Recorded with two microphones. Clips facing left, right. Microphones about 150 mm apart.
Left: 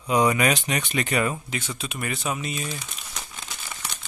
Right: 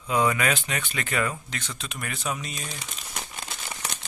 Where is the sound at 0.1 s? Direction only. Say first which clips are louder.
Left 3 dB; 20° left (ahead or behind).